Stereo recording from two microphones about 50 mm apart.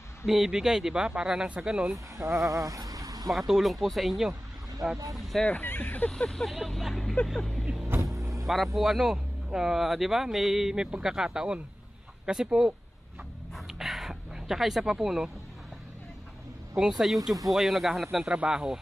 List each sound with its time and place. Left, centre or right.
0.3 s speech: centre
2.1 s speech: right
3.3 s speech: centre
5.5 s speech: left
6.0 s speech: centre
6.3 s speech: centre
8.0 s vehicle: right
8.7 s speech: centre
13.6 s a sound: centre
16.9 s speech: centre
18.2 s speech: right